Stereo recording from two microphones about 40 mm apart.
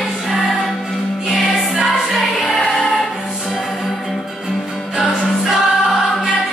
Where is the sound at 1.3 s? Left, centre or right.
Centre.